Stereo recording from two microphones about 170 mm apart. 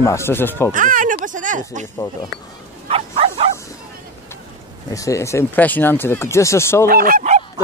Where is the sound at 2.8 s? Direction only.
35° right (ahead or behind).